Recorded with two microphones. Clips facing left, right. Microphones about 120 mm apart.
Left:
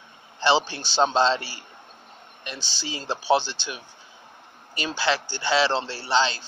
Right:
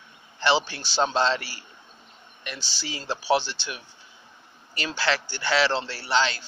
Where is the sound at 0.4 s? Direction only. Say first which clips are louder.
Left 2 dB; 20° left (ahead or behind).